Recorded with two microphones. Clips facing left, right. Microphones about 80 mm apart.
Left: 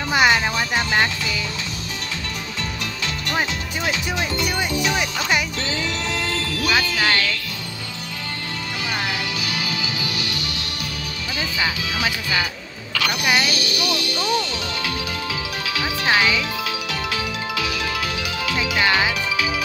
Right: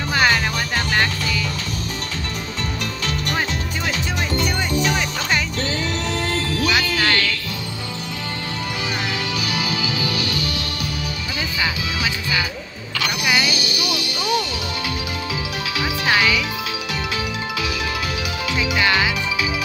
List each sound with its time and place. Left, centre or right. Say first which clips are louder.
0.1 s music: left 1 dB; centre
3.9 s music: right 2 dB; right
5.6 s music: right 2 dB; right
6.7 s music: left 1 dB; left
9.5 s music: right 3 dB; right
13.2 s music: even; left
13.5 s music: even; centre
16.1 s music: even; left
18.8 s music: even; left